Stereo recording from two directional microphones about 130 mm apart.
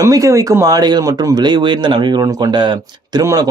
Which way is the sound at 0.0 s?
25° right (ahead or behind).